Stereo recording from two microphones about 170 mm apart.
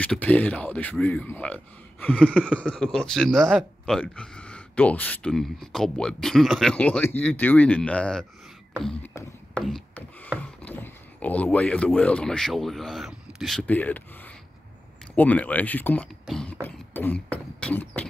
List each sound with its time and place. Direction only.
0.0 s speech: 10° left (ahead or behind)
9.0 s speech: 15° left (ahead or behind)
9.5 s a sound: centre (ahead or behind)
10.4 s speech: 10° left (ahead or behind)